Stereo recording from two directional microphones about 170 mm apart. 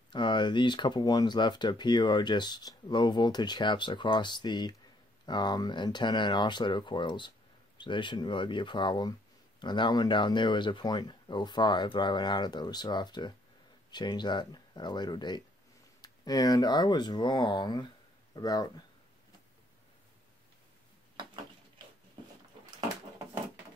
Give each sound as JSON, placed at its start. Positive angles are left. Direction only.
{"t": 0.1, "sound": "speech", "side_deg": 25}